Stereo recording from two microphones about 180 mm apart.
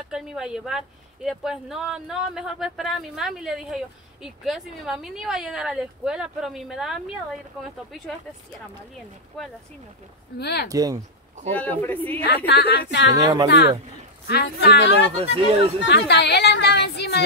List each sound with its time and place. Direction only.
0.1 s speech: 5° right (ahead or behind)
10.4 s speech: 65° left (ahead or behind)
10.7 s speech: 20° right (ahead or behind)
11.5 s speech: 10° left (ahead or behind)
12.4 s speech: 65° left (ahead or behind)
13.1 s speech: 20° right (ahead or behind)
14.2 s speech: 60° left (ahead or behind)
15.1 s speech: 30° right (ahead or behind)
15.9 s a woman's voice: 70° left (ahead or behind)